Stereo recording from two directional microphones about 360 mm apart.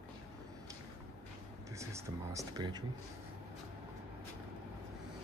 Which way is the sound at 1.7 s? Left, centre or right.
Centre.